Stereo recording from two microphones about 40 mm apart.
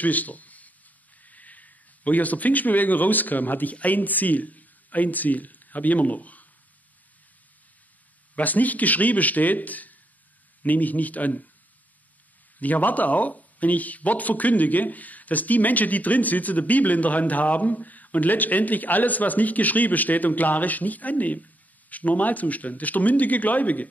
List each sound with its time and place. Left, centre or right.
0.0 s a sound: left
1.2 s speech: left
8.4 s speech: left
12.5 s speech: left